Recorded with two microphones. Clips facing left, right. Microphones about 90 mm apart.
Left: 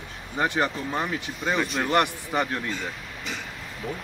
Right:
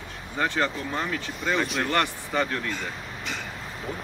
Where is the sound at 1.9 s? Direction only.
20° left (ahead or behind).